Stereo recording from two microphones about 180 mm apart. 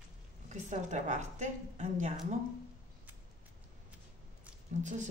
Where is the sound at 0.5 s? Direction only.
40° right (ahead or behind).